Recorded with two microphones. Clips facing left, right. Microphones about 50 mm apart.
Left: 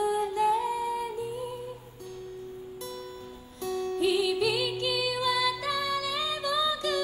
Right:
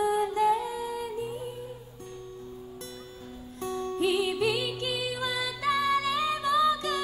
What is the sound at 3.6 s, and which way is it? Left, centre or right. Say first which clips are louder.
Music: left 1 dB; right.